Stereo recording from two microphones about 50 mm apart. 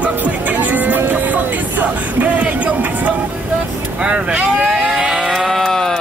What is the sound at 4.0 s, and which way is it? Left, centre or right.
Speech, right.